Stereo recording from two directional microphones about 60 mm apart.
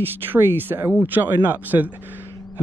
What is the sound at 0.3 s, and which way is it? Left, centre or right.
Speech, right.